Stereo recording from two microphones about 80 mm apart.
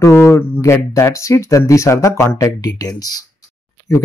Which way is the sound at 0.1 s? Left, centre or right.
Left.